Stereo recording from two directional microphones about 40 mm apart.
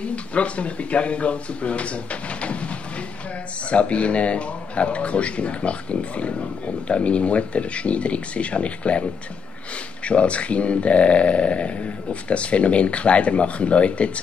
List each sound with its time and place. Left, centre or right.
0.0 s speech: left
10.0 s speech: left